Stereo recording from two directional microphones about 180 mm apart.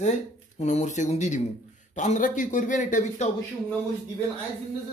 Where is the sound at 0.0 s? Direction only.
40° left (ahead or behind).